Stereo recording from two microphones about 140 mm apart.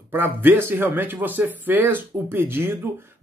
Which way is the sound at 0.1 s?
15° right (ahead or behind).